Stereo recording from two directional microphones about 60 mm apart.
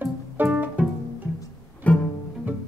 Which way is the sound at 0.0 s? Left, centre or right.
Right.